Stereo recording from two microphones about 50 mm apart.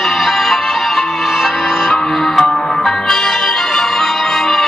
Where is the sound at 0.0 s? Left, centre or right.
Centre.